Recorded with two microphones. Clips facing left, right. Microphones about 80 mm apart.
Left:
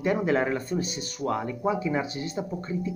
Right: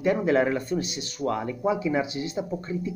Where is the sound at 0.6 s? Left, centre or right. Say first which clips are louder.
Right 1 dB; left.